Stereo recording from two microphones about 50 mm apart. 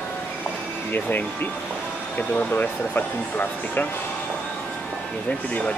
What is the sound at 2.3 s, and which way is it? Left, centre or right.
Speech, left.